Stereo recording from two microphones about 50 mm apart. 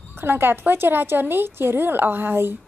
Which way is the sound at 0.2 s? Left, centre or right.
Right.